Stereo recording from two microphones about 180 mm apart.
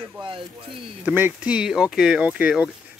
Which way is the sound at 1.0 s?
10° right (ahead or behind).